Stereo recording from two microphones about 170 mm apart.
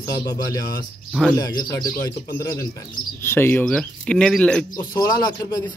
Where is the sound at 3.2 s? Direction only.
10° left (ahead or behind).